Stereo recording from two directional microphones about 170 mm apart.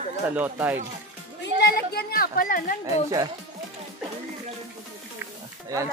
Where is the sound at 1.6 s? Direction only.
65° left (ahead or behind).